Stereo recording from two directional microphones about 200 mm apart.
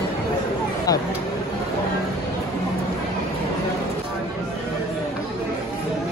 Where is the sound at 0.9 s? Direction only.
20° left (ahead or behind).